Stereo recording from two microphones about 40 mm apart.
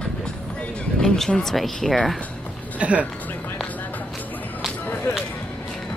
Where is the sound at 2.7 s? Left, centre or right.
Right.